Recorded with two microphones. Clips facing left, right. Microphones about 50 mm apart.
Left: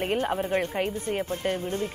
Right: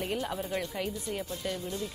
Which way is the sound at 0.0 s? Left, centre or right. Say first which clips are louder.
Left 7 dB; left.